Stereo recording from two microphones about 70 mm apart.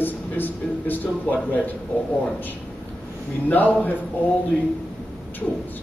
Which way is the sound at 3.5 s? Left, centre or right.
Left.